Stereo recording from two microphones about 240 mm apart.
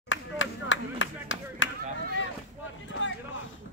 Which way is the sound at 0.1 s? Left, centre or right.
Left.